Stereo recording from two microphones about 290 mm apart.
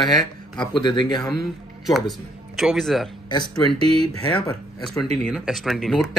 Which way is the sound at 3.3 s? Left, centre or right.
Centre.